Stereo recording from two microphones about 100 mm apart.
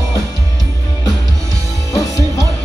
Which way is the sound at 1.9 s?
35° left (ahead or behind).